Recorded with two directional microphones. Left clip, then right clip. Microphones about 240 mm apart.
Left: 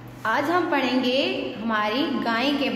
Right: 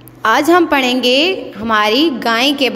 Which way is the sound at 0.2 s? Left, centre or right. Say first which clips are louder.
Right 12 dB; right.